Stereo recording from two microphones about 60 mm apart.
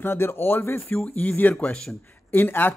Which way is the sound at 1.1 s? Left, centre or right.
Left.